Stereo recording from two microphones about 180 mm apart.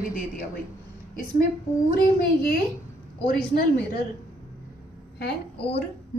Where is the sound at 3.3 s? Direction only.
55° left (ahead or behind).